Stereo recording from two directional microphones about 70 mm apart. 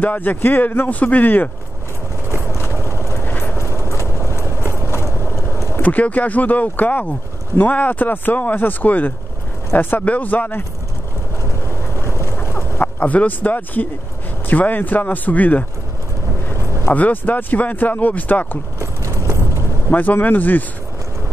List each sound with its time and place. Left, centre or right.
0.0 s speech: left
2.5 s vehicle: left
2.9 s vehicle: right
3.3 s clip-clop: left
3.6 s clip-clop: right
4.3 s clip-clop: left
4.9 s vehicle: left
5.8 s speech: left
12.2 s a sound: left
12.8 s speech: left
16.9 s speech: left
18.8 s clip-clop: right
19.9 s speech: left